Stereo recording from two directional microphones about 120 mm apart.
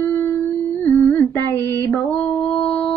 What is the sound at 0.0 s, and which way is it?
Humming, 25° left (ahead or behind).